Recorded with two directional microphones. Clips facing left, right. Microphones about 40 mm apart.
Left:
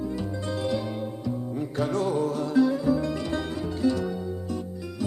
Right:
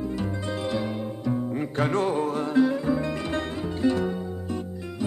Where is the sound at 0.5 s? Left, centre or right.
Right.